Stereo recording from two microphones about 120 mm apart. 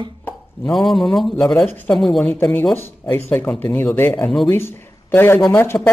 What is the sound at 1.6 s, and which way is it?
Speech, 15° left (ahead or behind).